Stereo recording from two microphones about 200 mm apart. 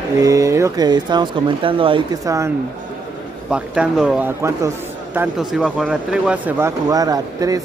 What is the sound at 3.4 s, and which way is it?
Speech, 5° right (ahead or behind).